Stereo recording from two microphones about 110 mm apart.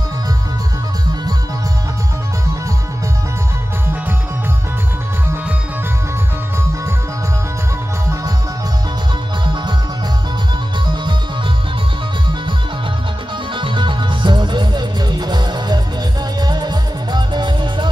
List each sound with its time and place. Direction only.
13.6 s music: 50° right (ahead or behind)